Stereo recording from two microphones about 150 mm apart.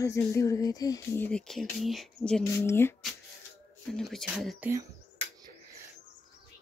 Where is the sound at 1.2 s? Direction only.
5° left (ahead or behind).